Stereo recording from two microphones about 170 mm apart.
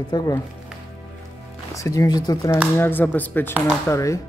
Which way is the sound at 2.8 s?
10° left (ahead or behind).